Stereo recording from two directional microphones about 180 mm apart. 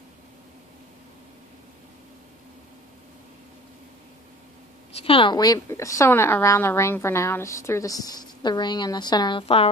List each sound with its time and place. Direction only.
4.9 s a woman's voice: 30° left (ahead or behind)